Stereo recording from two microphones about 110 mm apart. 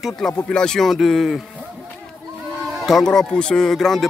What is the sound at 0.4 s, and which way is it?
Speech, 10° left (ahead or behind).